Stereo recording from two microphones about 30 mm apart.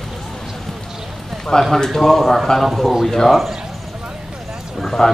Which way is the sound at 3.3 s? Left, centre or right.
Centre.